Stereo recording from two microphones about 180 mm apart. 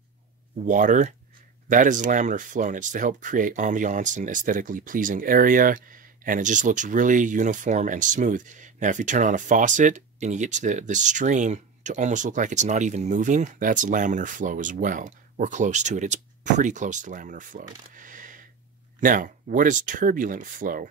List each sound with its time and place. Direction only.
0.7 s speech: 45° right (ahead or behind)